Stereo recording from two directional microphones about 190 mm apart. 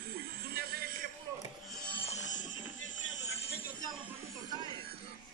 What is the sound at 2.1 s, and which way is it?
Music, 40° left (ahead or behind).